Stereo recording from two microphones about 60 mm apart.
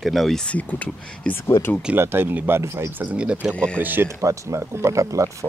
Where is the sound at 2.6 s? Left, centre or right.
Right.